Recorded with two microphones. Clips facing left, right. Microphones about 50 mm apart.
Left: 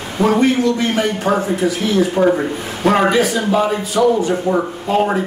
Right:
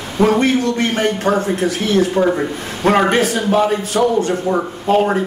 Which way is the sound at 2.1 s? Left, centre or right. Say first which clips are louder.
Left 1 dB; centre.